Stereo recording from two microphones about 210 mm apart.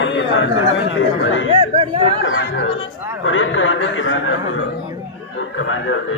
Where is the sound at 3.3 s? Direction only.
65° left (ahead or behind).